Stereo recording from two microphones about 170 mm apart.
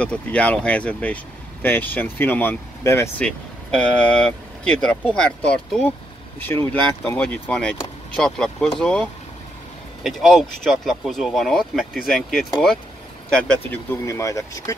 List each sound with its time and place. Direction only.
0.0 s speech: 5° left (ahead or behind)
13.3 s speech: 10° left (ahead or behind)